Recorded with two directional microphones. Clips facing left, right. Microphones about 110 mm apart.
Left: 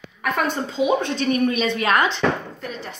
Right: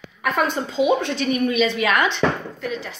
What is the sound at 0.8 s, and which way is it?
Speech, 35° left (ahead or behind).